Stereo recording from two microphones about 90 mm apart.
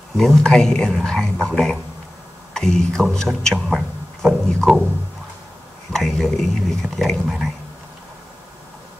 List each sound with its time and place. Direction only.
0.2 s a man's voice: 5° left (ahead or behind)
5.9 s speech: centre (ahead or behind)